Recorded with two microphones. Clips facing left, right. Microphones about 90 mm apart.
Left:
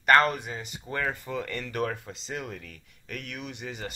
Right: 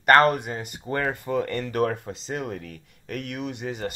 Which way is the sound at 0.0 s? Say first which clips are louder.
Right 4 dB; 50° right (ahead or behind).